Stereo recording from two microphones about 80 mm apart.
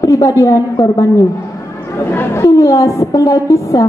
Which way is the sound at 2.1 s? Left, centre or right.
Left.